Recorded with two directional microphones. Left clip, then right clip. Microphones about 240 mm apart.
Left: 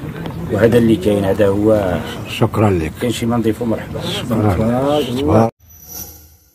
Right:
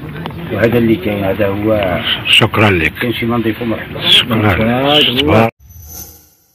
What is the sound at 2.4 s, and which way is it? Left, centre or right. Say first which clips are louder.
Speech: right 5 dB; centre.